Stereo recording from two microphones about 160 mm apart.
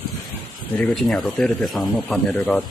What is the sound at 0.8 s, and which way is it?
Speech, centre (ahead or behind).